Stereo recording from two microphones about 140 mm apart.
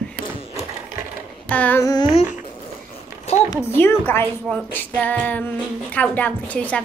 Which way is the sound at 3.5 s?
15° left (ahead or behind).